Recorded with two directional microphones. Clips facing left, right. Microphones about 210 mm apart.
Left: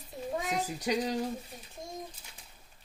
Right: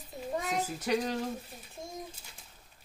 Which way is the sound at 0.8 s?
15° left (ahead or behind).